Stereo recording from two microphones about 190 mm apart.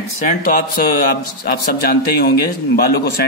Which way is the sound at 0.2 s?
45° left (ahead or behind).